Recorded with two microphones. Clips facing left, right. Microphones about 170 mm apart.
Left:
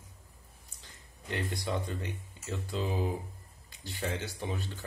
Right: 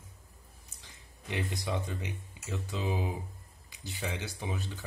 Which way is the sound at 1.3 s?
15° right (ahead or behind).